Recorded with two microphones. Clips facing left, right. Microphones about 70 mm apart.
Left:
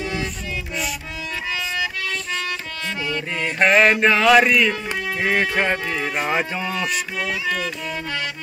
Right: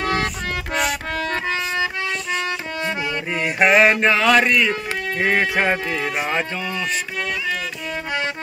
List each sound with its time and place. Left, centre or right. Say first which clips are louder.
0.0 s music: right 5 dB; right
3.1 s speech: right 1 dB; centre